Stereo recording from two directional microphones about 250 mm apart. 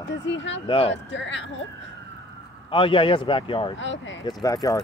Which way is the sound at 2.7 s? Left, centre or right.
Left.